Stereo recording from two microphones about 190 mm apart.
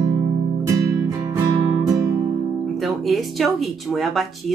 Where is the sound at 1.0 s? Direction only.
20° right (ahead or behind).